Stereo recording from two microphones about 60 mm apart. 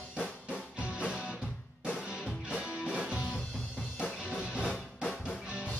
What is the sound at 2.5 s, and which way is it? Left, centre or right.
Music, centre.